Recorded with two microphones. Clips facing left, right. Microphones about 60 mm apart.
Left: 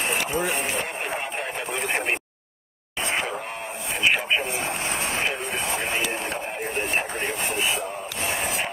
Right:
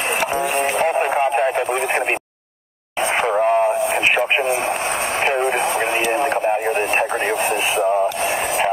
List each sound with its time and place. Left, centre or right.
0.2 s a sound: right
1.1 s radio: right
3.2 s radio: right
5.4 s radio: right
5.9 s radio: right